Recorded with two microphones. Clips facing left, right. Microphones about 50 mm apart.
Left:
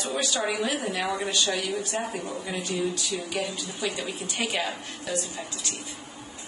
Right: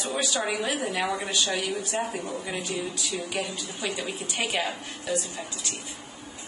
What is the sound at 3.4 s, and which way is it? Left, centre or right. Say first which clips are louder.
Speech: left 1 dB; right.